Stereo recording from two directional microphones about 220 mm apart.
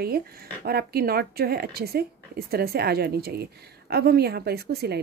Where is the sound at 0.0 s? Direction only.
45° right (ahead or behind).